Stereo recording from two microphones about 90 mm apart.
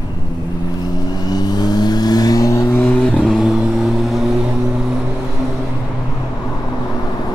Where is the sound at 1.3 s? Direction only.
45° left (ahead or behind).